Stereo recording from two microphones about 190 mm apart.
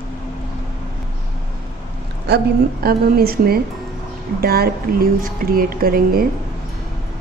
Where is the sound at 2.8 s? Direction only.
50° right (ahead or behind).